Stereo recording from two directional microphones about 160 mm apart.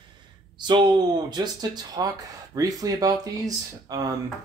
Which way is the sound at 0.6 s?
30° right (ahead or behind).